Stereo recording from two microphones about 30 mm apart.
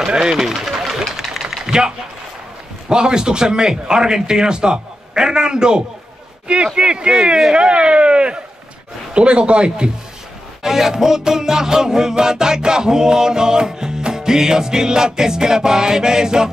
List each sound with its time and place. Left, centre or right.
0.1 s music: right
0.9 s engine: centre
1.7 s speech: right
2.9 s music: right
6.4 s speech: right
6.8 s music: right
7.5 s speech: right
10.6 s music: centre